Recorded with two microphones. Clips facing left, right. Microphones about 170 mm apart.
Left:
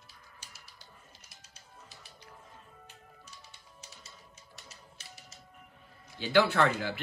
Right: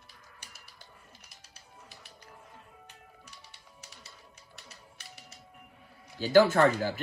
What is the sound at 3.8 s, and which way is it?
Music, 60° right (ahead or behind).